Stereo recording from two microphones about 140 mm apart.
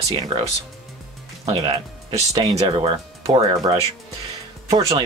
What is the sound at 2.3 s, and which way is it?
Speech, 25° right (ahead or behind).